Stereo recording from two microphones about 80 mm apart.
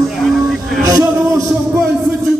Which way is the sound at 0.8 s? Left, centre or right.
Right.